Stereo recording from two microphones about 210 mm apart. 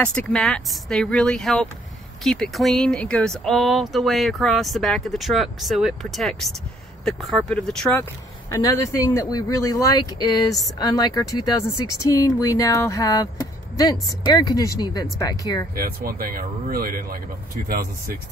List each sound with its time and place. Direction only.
0.0 s speech: 5° left (ahead or behind)
15.7 s a man's voice: 45° right (ahead or behind)